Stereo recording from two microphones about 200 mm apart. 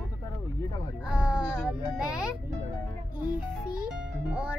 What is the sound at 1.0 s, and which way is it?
Music, 5° right (ahead or behind).